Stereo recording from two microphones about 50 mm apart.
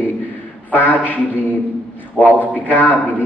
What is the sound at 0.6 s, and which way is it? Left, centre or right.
Speech, left.